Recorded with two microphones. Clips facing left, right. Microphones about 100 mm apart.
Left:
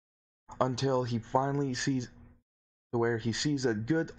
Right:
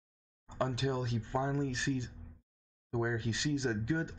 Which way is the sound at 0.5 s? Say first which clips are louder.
Left 5 dB; 65° left (ahead or behind).